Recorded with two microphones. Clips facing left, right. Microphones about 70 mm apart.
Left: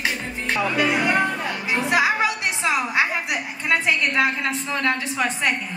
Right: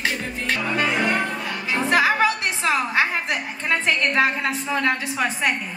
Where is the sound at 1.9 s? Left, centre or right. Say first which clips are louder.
Right 2 dB; centre.